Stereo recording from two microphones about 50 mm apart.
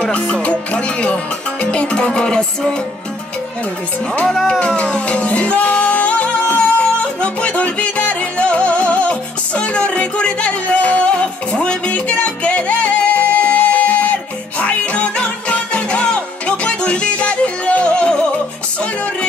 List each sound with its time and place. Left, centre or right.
0.0 s music: left
4.6 s music: left